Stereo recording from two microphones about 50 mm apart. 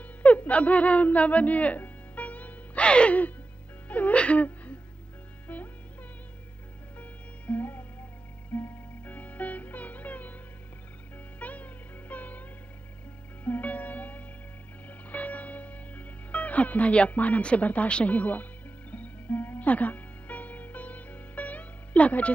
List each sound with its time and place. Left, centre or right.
0.0 s music: left
7.0 s music: left
11.3 s music: left